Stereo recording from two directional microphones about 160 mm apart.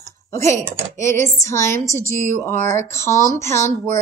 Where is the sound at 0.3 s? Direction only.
20° left (ahead or behind).